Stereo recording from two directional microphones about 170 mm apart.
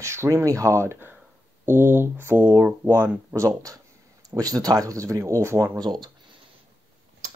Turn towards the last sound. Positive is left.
turn(degrees=-25)  # may be behind; listen again after turning